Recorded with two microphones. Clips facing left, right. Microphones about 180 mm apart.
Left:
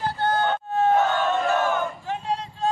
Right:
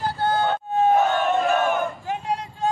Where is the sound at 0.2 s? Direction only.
10° right (ahead or behind).